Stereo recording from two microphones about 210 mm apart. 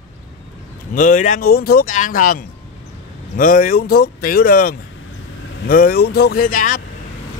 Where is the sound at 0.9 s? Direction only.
35° left (ahead or behind).